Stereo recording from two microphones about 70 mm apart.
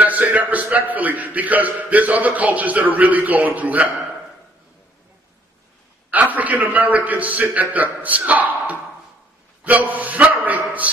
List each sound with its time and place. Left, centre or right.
0.0 s a man's voice: right
6.0 s a man's voice: right